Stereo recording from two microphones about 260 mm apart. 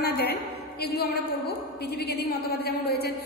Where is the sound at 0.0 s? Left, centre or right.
Left.